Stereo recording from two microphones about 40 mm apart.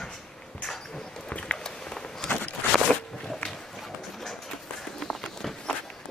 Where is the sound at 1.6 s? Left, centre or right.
Centre.